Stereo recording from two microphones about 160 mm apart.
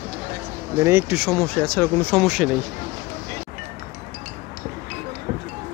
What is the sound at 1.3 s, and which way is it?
Speech, 5° left (ahead or behind).